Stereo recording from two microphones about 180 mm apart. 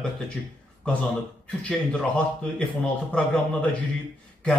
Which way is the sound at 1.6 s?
5° left (ahead or behind).